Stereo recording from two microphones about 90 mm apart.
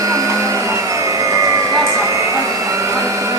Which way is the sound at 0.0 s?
35° right (ahead or behind).